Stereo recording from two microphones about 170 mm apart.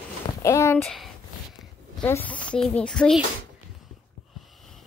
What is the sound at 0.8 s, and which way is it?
Speech, centre (ahead or behind).